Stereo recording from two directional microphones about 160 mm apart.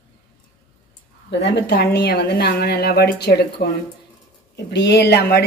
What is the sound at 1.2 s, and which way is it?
Speech, 90° left.